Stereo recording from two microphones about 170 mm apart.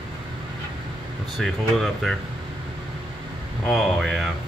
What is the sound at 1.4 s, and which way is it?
Speech, centre (ahead or behind).